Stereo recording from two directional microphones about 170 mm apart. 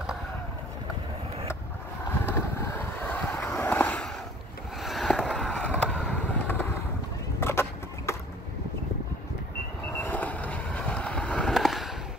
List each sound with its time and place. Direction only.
2.2 s boat: 15° left (ahead or behind)
4.7 s skateboard: centre (ahead or behind)
7.3 s vehicle: 15° left (ahead or behind)
9.9 s vehicle: 10° left (ahead or behind)